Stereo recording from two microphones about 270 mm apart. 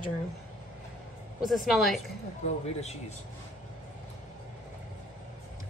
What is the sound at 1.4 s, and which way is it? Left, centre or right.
Speech, centre.